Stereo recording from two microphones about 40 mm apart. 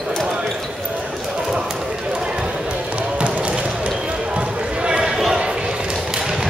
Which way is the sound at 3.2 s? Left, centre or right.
Right.